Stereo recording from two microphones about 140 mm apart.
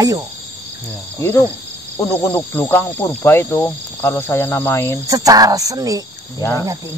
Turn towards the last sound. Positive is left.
turn(degrees=20)  # may be behind; listen again after turning